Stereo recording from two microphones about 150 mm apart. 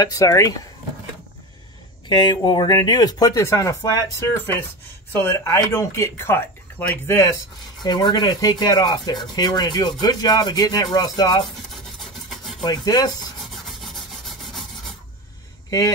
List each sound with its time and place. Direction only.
0.0 s speech: 25° left (ahead or behind)
2.0 s speech: 30° left (ahead or behind)
12.3 s filing: centre (ahead or behind)
12.6 s speech: 25° left (ahead or behind)
13.7 s rub: centre (ahead or behind)